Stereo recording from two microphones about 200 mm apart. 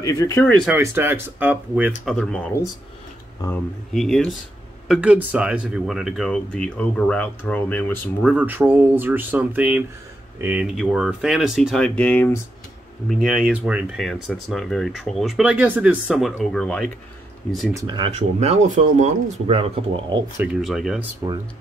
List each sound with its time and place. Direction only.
0.0 s speech: 15° left (ahead or behind)
0.7 s speech: 10° right (ahead or behind)
2.0 s speech: 5° left (ahead or behind)
8.3 s speech: 10° right (ahead or behind)
17.7 s speech: 20° right (ahead or behind)
20.3 s speech: centre (ahead or behind)